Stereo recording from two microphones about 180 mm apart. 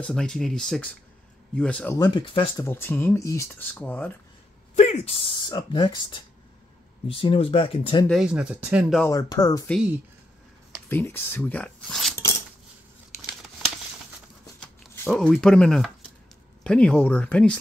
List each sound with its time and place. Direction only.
0.0 s speech: 5° left (ahead or behind)
2.0 s speech: 25° left (ahead or behind)
2.6 s speech: 15° left (ahead or behind)
4.7 s speech: 35° left (ahead or behind)
8.1 s speech: 5° right (ahead or behind)
9.0 s speech: 20° left (ahead or behind)
10.9 s speech: 10° left (ahead or behind)
14.8 s speech: centre (ahead or behind)